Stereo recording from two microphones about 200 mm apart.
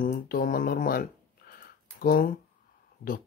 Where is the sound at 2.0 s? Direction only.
45° left (ahead or behind).